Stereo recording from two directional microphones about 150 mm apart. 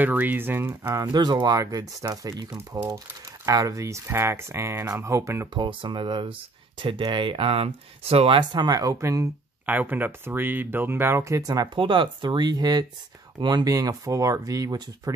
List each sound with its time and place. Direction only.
0.0 s speech: 10° right (ahead or behind)
1.1 s speech: 30° right (ahead or behind)
2.5 s speech: 10° right (ahead or behind)
5.6 s speech: 30° right (ahead or behind)